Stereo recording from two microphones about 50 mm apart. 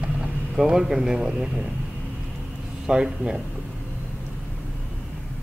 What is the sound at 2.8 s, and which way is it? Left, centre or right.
Speech, centre.